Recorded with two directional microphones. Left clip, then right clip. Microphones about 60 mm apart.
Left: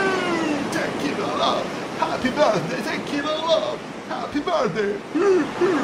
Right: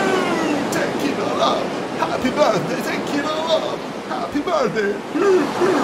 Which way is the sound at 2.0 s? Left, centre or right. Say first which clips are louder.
Right 2 dB; right.